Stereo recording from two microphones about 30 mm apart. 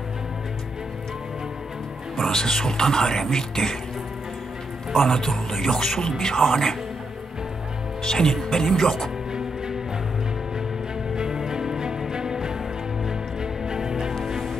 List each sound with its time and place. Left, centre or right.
2.2 s speech: centre
5.0 s speech: centre
8.0 s speech: centre
11.1 s music: right